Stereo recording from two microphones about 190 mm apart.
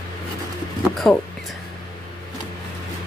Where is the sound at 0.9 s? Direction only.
Centre (ahead or behind).